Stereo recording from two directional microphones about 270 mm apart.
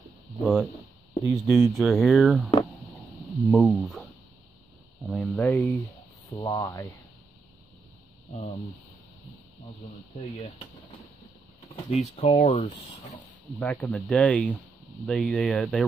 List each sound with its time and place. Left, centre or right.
0.4 s speech: centre
11.7 s speech: left
13.6 s speech: centre